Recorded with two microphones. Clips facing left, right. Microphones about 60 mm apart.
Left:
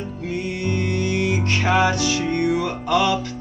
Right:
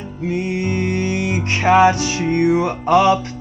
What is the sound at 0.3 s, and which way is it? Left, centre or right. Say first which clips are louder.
Music: right 4 dB; right.